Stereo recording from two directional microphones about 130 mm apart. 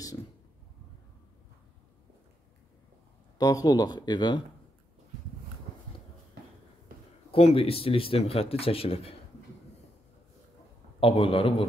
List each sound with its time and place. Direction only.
3.3 s speech: 30° left (ahead or behind)
7.2 s speech: 45° left (ahead or behind)
11.0 s speech: 45° left (ahead or behind)